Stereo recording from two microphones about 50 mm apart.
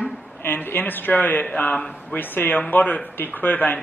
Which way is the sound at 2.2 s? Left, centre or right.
Left.